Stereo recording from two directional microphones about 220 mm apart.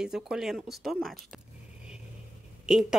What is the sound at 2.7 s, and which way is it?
Speech, 5° right (ahead or behind).